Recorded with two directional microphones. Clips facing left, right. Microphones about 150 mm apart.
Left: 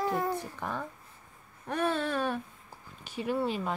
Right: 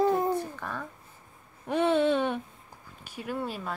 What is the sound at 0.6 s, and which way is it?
Speech, 15° left (ahead or behind).